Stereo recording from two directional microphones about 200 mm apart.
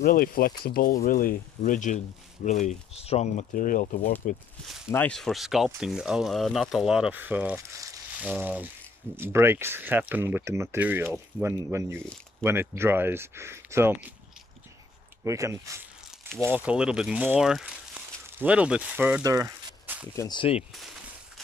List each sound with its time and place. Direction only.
0.0 s speech: 45° left (ahead or behind)
4.9 s speech: 5° left (ahead or behind); by 13.9 s 10° right (ahead or behind)
15.2 s speech: 15° right (ahead or behind)
20.2 s speech: 20° left (ahead or behind)